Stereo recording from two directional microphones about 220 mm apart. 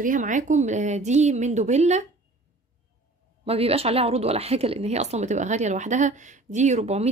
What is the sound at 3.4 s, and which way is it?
Speech, 25° right (ahead or behind).